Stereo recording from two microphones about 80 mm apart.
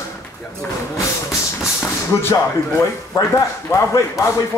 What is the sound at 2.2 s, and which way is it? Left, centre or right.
Speech, left.